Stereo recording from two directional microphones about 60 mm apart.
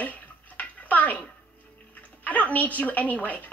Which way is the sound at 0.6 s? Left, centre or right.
Left.